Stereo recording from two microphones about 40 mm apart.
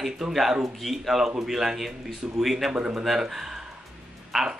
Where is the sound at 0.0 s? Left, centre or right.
Centre.